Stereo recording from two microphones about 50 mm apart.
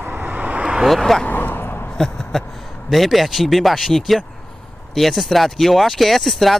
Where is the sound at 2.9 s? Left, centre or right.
Centre.